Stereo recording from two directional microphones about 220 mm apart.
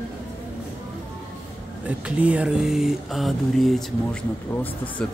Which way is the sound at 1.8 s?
5° right (ahead or behind).